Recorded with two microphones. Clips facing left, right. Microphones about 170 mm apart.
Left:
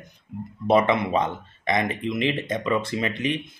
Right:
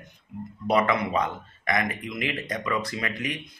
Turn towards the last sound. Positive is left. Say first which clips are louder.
# left 5 dB
turn(degrees=25)  # may be behind; listen again after turning